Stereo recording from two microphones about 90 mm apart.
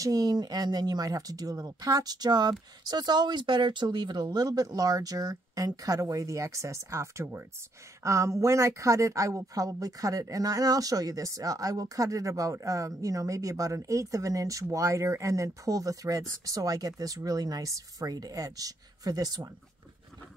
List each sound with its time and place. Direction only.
0.0 s a woman's voice: 45° right (ahead or behind)